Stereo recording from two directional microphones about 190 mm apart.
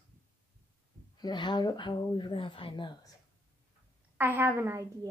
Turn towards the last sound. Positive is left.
turn(degrees=-10)  # may be behind; listen again after turning